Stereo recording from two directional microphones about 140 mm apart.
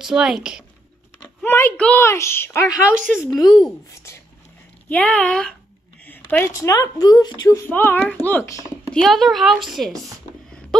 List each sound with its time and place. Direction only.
0.0 s a woman's voice: 5° right (ahead or behind)
1.4 s a child's voice: 15° left (ahead or behind)
3.9 s speech: 20° left (ahead or behind)
4.8 s speech: 10° left (ahead or behind)
6.0 s speech: 15° left (ahead or behind)
8.9 s a woman's voice: centre (ahead or behind)